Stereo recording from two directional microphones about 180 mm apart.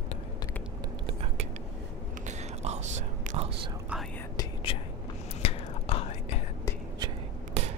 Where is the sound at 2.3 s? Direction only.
40° right (ahead or behind).